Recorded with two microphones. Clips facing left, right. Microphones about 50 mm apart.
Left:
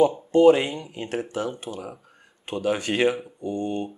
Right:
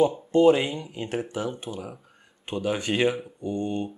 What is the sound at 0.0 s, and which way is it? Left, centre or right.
Speech, centre.